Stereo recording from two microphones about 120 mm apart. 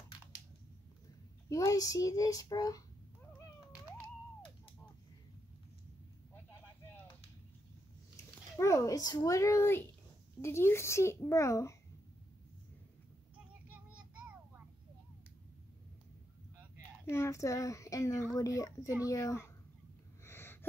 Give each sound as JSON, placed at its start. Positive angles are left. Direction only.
{"t": 1.5, "sound": "speech", "side_deg": 25}
{"t": 8.5, "sound": "speech", "side_deg": 25}
{"t": 13.7, "sound": "child singing", "side_deg": -10}
{"t": 17.0, "sound": "speech", "side_deg": 20}
{"t": 20.2, "sound": "gasp", "side_deg": 20}